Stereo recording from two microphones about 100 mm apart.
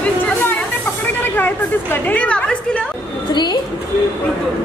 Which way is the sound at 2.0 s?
15° left (ahead or behind).